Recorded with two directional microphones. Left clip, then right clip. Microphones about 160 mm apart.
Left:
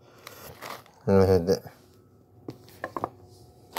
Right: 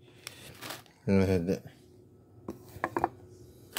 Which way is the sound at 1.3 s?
5° right (ahead or behind).